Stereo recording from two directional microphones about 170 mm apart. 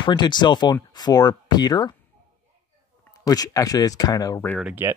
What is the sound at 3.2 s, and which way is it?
Speech, 20° left (ahead or behind).